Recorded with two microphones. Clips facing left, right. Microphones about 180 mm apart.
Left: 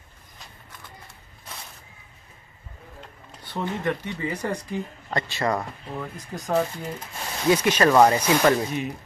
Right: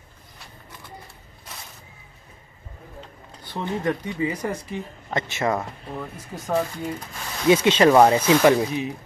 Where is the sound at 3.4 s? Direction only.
15° right (ahead or behind).